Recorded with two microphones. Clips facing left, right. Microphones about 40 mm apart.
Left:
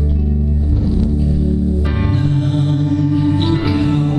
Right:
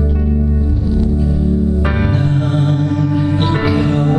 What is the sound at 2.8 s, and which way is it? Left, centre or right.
Music, right.